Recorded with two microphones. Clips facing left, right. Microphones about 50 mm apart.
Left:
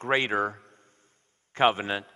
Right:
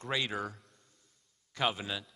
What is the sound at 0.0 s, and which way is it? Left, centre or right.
A man's voice, left.